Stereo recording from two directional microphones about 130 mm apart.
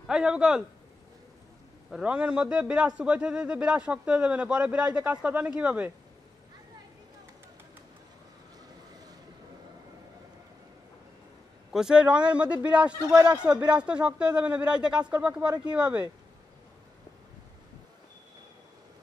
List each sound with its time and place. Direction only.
0.0 s a man's voice: 5° right (ahead or behind)
1.9 s a man's voice: 5° right (ahead or behind)
11.7 s a man's voice: 5° right (ahead or behind)
13.1 s speech: 30° right (ahead or behind)
13.4 s a man's voice: 10° right (ahead or behind)